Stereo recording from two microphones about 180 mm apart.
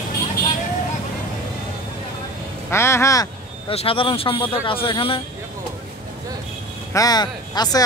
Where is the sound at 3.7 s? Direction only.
30° left (ahead or behind).